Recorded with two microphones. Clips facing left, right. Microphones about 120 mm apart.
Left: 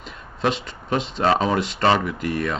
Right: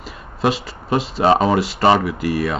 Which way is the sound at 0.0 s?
5° right (ahead or behind).